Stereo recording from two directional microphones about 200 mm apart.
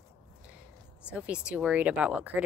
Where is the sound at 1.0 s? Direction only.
5° right (ahead or behind).